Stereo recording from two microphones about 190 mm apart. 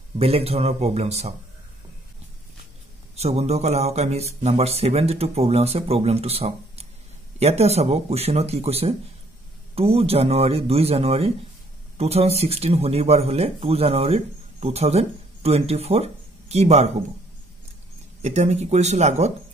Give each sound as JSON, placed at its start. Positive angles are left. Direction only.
{"t": 0.2, "sound": "speech", "side_deg": -30}
{"t": 3.2, "sound": "speech", "side_deg": -35}
{"t": 18.2, "sound": "speech", "side_deg": -35}